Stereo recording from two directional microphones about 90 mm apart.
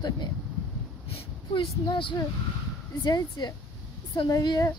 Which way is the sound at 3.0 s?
50° left (ahead or behind).